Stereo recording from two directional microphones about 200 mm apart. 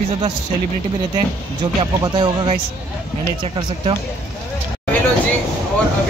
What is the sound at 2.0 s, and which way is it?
Speech, 20° right (ahead or behind).